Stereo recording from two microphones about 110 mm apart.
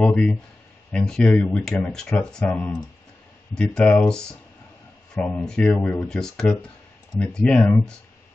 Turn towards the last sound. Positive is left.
turn(degrees=10)  # may be behind; listen again after turning